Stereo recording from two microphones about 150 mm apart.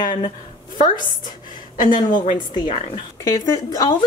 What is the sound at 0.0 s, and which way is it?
Speech, 55° left (ahead or behind).